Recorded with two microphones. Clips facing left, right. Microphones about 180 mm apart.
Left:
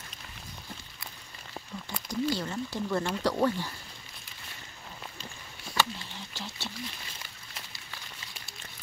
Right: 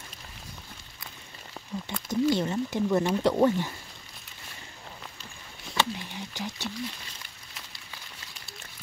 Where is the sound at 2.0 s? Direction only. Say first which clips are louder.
Right 6 dB; 20° right (ahead or behind).